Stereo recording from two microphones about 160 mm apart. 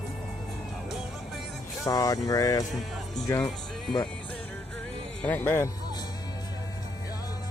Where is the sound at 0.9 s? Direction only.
Centre (ahead or behind).